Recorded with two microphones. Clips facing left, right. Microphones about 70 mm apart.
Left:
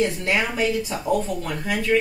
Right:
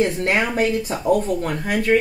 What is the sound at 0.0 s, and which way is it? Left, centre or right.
Speech, right.